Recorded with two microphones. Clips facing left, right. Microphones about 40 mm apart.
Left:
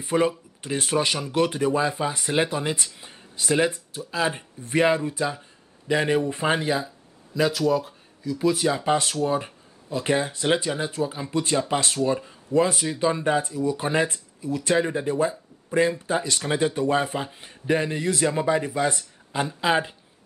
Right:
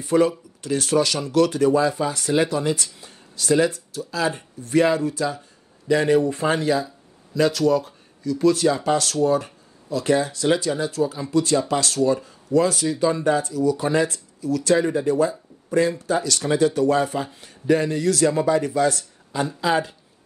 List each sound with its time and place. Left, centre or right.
0.0 s speech: left
7.3 s speech: centre; by 20.0 s left